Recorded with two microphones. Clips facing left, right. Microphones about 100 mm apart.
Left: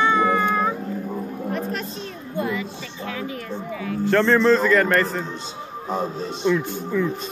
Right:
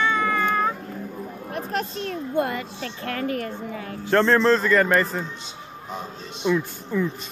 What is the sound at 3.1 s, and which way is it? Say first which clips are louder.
Music: right 3 dB; 60° right (ahead or behind).